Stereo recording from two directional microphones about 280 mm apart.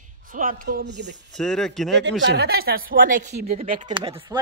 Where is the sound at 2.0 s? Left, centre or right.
Right.